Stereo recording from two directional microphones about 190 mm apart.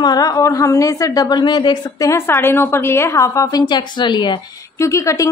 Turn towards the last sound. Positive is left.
turn(degrees=15)  # may be behind; listen again after turning